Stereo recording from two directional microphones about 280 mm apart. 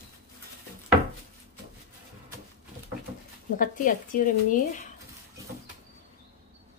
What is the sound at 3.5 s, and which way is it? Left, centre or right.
Speech, left.